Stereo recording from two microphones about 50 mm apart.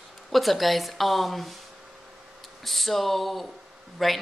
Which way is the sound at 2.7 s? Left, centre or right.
Centre.